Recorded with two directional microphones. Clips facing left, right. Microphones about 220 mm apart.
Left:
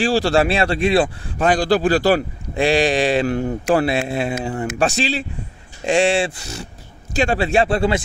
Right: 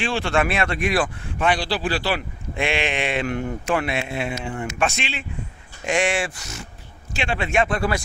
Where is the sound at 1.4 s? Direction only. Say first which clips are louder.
Left 6 dB; 45° left (ahead or behind).